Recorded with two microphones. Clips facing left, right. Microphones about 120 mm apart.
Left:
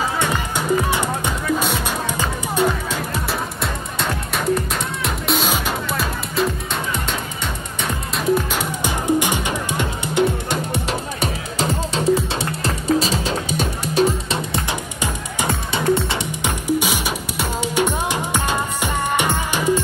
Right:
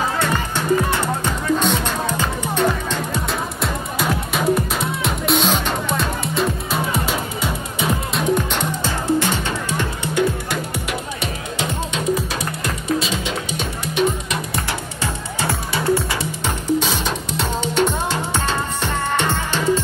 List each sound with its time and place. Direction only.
0.2 s music: 10° left (ahead or behind)
3.6 s music: centre (ahead or behind)
8.8 s music: 15° left (ahead or behind)
11.1 s music: 35° left (ahead or behind)
15.4 s music: 20° left (ahead or behind)